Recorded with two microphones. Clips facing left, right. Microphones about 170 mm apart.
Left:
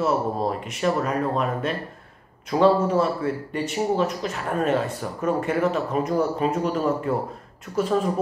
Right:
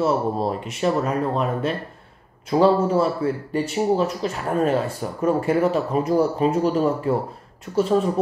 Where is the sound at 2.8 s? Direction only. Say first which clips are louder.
Right 2 dB; 30° right (ahead or behind).